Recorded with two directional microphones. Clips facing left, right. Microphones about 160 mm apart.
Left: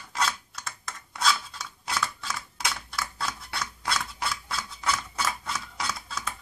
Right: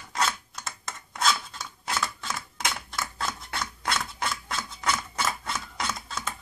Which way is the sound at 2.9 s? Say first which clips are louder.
Right 1 dB; 25° right (ahead or behind).